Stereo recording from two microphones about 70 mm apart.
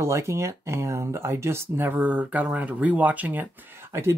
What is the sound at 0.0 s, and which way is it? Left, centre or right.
Speech, right.